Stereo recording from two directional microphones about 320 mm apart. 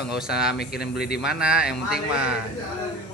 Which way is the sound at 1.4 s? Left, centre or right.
Centre.